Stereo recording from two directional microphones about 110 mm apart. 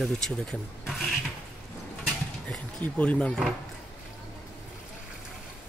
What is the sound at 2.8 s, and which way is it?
Speech, 15° left (ahead or behind).